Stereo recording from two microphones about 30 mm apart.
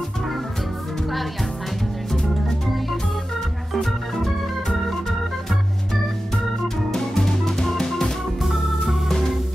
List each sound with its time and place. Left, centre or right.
3.8 s organ: centre
6.9 s music: centre
8.8 s organ: centre